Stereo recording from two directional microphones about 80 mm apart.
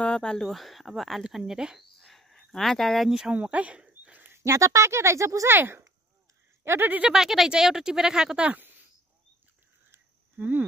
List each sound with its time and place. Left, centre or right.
0.0 s speech: centre
1.8 s speech: centre
3.3 s a sound: centre
4.3 s speech: right
5.5 s speech: right
7.1 s speech: centre
9.8 s a sound: right